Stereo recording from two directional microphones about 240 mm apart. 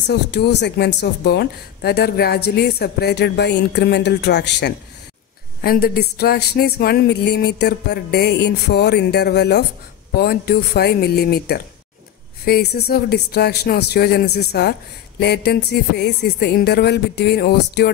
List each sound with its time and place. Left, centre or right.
0.0 s a woman's voice: left